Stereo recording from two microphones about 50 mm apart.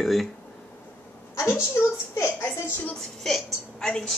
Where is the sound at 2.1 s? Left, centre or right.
Left.